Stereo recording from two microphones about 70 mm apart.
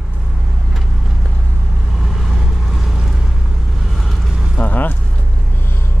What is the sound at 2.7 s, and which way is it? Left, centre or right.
Vehicle, centre.